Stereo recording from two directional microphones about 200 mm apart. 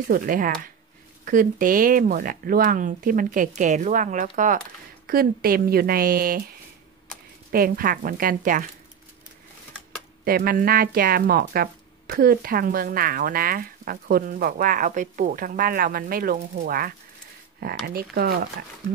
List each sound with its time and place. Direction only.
0.1 s speech: 45° right (ahead or behind)
7.5 s speech: 45° right (ahead or behind)
10.2 s speech: 45° right (ahead or behind)